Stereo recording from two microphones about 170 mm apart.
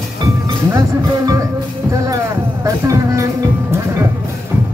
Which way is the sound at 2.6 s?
20° right (ahead or behind).